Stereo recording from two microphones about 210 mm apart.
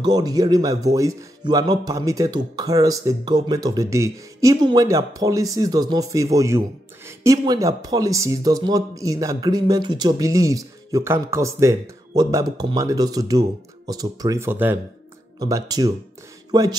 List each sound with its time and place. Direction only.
0.0 s speech: 20° right (ahead or behind)